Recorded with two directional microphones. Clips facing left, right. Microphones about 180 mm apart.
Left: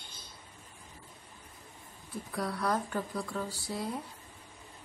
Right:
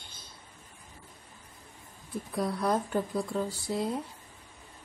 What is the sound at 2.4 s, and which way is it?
Speech, 20° right (ahead or behind).